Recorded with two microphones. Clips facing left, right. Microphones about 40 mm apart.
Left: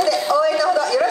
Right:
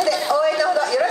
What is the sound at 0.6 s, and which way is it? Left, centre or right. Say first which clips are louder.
Speech: left 1 dB; right.